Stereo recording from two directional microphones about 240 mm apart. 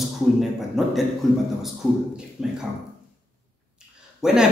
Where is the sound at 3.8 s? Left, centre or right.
Centre.